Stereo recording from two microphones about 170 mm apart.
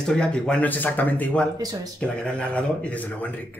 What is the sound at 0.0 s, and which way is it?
Speech, 5° left (ahead or behind).